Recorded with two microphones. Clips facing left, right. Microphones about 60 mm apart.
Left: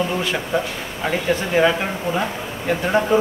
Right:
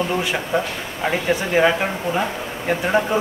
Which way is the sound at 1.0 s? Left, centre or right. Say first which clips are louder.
Even; centre.